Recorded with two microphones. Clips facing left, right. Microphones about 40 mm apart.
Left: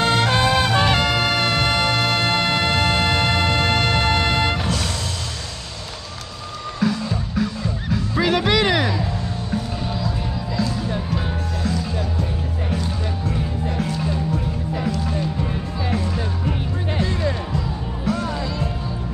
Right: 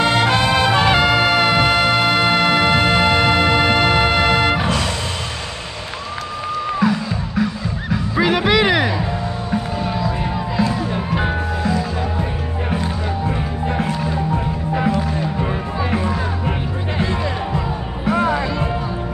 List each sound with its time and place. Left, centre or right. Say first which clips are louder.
0.0 s music: right 2 dB; right
0.9 s music: right 5 dB; right
6.8 s music: even; centre; by 11.1 s right
11.6 s music: right 2 dB; right